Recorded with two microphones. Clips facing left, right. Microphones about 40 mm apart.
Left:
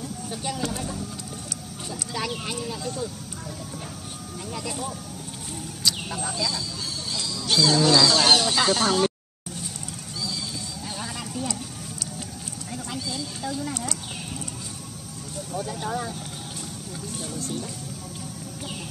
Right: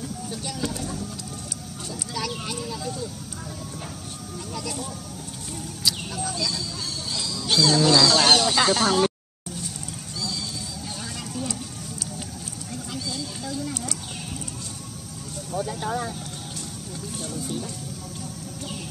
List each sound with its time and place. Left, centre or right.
0.3 s speech: centre
1.9 s speech: centre
4.6 s speech: centre
5.9 s a sound: centre
6.3 s speech: centre
12.7 s a sound: centre
15.5 s speech: centre